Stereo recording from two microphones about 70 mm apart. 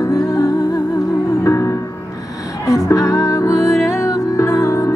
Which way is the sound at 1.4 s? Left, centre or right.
Left.